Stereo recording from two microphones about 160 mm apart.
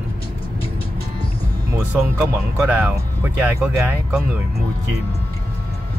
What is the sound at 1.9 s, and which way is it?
Speech, 15° right (ahead or behind).